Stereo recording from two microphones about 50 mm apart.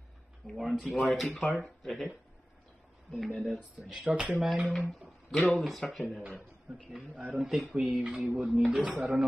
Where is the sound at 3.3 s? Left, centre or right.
Centre.